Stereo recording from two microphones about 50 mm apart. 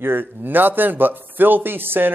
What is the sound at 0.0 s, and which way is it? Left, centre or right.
Speech, right.